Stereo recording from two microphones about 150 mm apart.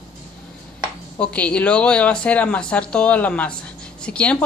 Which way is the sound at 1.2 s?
10° left (ahead or behind).